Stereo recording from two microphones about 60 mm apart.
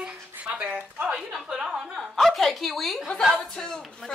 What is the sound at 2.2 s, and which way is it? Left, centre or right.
A woman's voice, centre.